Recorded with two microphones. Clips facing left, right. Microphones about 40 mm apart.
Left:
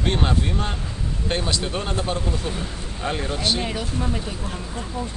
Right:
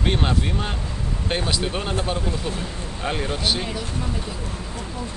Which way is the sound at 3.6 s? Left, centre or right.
Left.